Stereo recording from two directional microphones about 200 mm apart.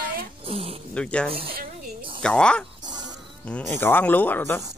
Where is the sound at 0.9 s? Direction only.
5° left (ahead or behind).